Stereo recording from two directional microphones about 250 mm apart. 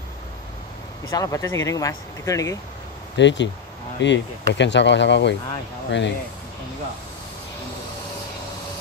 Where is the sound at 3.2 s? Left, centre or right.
Left.